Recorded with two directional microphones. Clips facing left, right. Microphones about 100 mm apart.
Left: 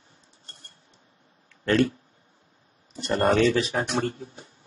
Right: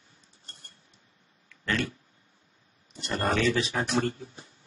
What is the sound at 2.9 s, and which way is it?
Speech, 35° left (ahead or behind).